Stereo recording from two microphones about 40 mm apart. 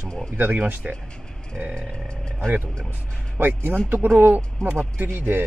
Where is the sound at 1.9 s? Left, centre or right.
Left.